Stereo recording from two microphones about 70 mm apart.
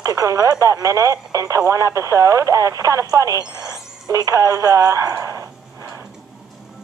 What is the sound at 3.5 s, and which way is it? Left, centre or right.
Speech, right.